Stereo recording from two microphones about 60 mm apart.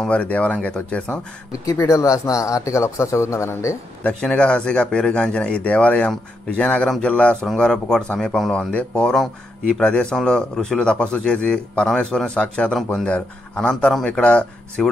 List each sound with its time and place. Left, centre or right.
0.0 s speech: centre
1.9 s speech: left
4.4 s speech: centre
9.1 s speech: centre